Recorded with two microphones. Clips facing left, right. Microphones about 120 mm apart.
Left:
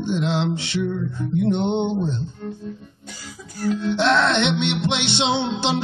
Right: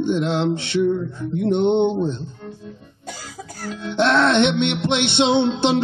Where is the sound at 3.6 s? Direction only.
50° right (ahead or behind).